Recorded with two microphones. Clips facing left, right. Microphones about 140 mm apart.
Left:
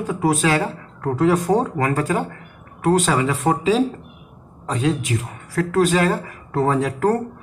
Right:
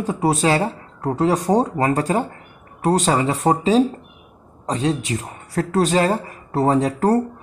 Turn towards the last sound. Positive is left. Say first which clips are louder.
# right 2 dB
turn(degrees=-35)  # may be behind; listen again after turning